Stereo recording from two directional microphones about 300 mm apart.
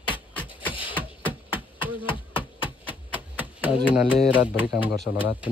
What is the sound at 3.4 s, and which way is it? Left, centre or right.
Typewriter, centre.